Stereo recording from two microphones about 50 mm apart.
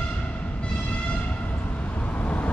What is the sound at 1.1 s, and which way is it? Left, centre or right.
Train, left.